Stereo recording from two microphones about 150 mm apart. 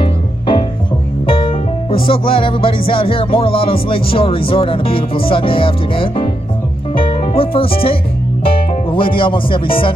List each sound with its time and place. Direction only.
0.0 s music: 30° left (ahead or behind)
2.9 s speech: 35° left (ahead or behind)
6.9 s music: 35° left (ahead or behind)
8.5 s speech: 35° left (ahead or behind)